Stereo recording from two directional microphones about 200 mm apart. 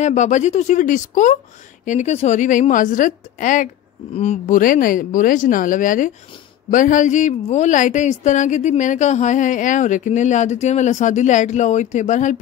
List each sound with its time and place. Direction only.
0.0 s a woman's voice: 35° left (ahead or behind)